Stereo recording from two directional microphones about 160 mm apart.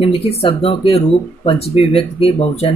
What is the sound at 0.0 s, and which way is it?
Speech, 35° left (ahead or behind).